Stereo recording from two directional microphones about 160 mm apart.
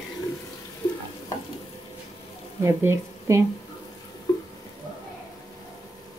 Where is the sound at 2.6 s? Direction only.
15° right (ahead or behind).